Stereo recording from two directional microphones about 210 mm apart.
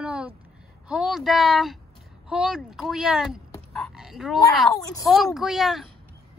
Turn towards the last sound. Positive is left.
turn(degrees=0)  # may be behind; listen again after turning